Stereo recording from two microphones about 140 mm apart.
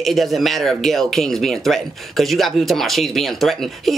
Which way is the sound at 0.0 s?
Centre (ahead or behind).